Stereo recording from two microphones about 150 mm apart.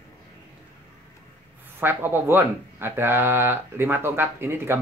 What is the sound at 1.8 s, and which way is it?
Speech, 15° right (ahead or behind).